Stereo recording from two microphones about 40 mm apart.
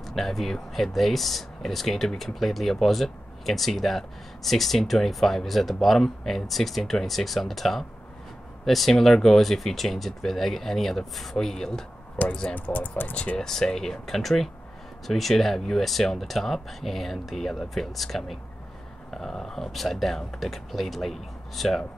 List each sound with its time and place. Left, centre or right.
0.0 s speech: centre
12.5 s speech: left
13.4 s speech: centre